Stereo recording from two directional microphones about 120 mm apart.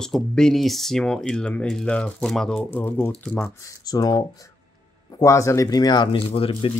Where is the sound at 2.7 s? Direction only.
15° left (ahead or behind).